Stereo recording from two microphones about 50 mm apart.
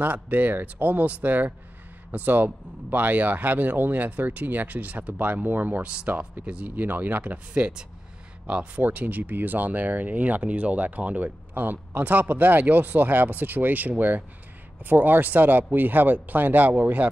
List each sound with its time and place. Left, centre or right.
0.0 s speech: right
5.8 s speech: right
6.0 s speech: right
6.4 s speech: right
7.5 s speech: right
8.8 s speech: right